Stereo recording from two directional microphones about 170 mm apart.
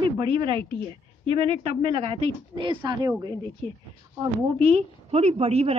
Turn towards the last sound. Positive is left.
turn(degrees=-35)  # may be behind; listen again after turning